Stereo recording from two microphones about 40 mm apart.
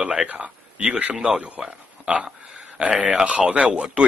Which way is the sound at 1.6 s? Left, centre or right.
Centre.